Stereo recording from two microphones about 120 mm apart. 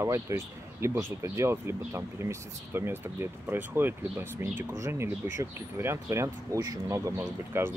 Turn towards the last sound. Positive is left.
turn(degrees=-25)  # may be behind; listen again after turning